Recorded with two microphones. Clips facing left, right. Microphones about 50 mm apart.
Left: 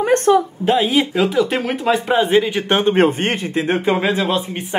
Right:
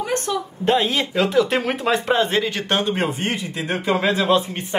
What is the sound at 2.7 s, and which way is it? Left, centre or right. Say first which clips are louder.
A man's voice: left 8 dB; left.